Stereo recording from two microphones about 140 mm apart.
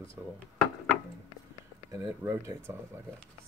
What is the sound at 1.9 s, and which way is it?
Speech, 20° right (ahead or behind).